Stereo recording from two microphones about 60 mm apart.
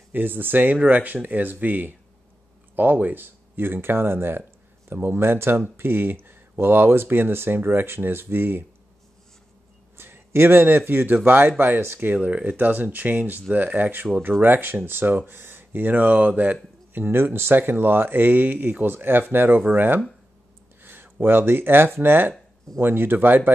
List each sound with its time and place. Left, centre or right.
0.1 s speech: right
9.9 s a sound: right
10.9 s speech: right
12.2 s speech: right
16.9 s speech: right